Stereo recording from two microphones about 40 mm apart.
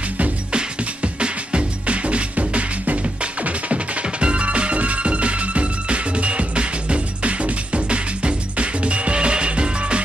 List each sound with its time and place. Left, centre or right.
0.5 s music: right